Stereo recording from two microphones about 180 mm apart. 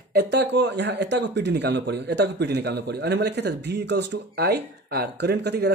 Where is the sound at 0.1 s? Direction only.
65° right (ahead or behind).